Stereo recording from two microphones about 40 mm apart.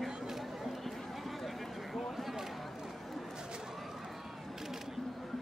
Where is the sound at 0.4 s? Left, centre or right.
Centre.